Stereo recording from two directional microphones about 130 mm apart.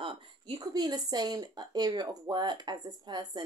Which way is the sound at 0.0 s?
40° right (ahead or behind).